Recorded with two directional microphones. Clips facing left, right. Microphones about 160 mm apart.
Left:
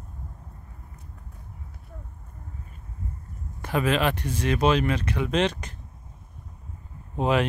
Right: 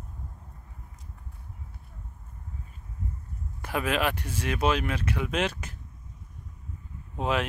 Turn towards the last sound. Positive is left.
turn(degrees=0)  # may be behind; listen again after turning